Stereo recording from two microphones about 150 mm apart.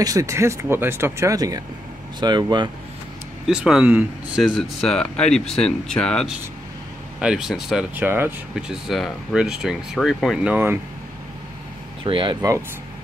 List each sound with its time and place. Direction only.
0.0 s speech: 20° right (ahead or behind)
3.4 s speech: 5° right (ahead or behind)
8.0 s speech: 15° right (ahead or behind)
12.0 s speech: 35° right (ahead or behind)